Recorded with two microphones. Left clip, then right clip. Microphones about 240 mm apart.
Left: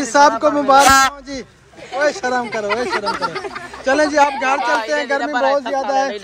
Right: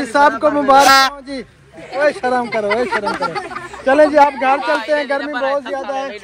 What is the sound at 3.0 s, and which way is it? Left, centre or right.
Speech, centre.